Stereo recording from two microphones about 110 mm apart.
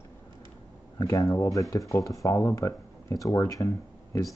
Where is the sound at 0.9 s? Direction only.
25° left (ahead or behind).